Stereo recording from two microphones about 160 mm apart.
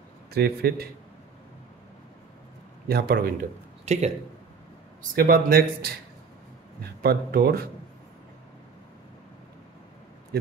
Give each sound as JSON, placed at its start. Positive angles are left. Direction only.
{"t": 0.3, "sound": "speech", "side_deg": -75}
{"t": 2.9, "sound": "speech", "side_deg": -80}
{"t": 3.8, "sound": "speech", "side_deg": -45}
{"t": 5.0, "sound": "speech", "side_deg": -65}
{"t": 7.0, "sound": "speech", "side_deg": -80}